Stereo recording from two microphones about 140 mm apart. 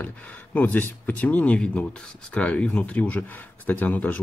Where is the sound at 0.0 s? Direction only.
10° left (ahead or behind).